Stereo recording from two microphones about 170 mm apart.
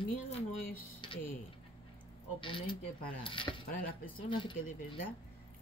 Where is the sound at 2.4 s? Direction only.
30° left (ahead or behind).